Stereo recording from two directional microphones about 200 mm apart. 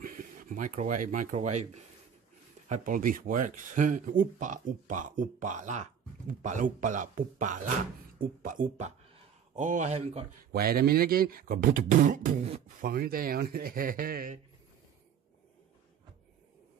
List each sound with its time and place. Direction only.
0.0 s speech: 45° right (ahead or behind)
10.5 s speech: 50° right (ahead or behind); by 12.7 s 35° right (ahead or behind)
12.8 s speech: 45° right (ahead or behind)